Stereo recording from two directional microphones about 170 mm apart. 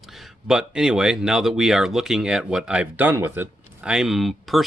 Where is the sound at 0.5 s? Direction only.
5° right (ahead or behind).